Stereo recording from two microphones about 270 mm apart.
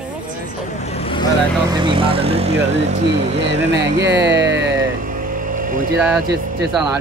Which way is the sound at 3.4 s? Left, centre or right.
Right.